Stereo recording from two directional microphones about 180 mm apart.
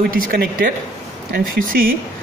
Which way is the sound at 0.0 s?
55° right (ahead or behind).